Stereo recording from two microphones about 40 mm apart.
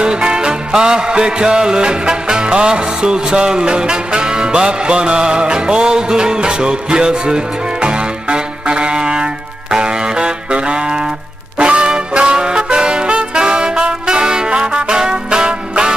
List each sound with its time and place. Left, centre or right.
0.0 s music: right
14.5 s music: right